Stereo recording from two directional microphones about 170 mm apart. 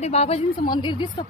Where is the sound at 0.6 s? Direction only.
25° left (ahead or behind).